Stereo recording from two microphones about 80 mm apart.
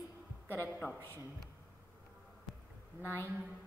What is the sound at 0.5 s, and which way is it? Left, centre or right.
Speech, left.